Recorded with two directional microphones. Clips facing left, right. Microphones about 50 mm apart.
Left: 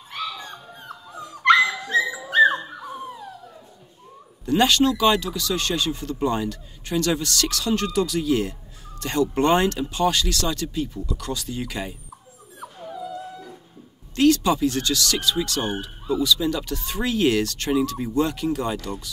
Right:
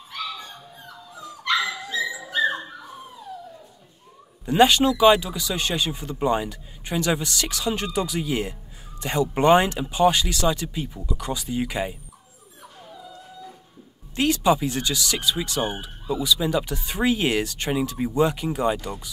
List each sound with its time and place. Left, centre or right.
1.4 s dog: left
4.5 s speech: centre
14.1 s speech: centre